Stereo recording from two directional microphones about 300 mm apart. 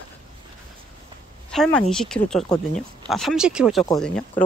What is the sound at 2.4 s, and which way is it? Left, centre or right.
Speech, centre.